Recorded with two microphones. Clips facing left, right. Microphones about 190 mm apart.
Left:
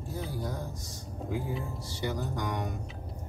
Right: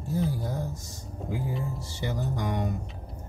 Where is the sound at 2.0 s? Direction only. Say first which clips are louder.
Right 2 dB; 25° right (ahead or behind).